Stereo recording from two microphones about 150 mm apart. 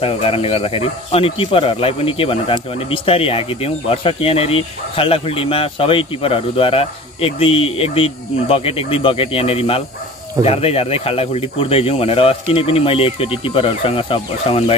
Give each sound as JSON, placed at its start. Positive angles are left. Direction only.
{"t": 0.0, "sound": "speech", "side_deg": 40}